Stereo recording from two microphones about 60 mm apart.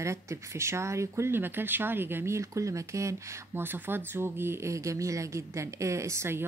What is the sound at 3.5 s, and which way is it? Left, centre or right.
Speech, right.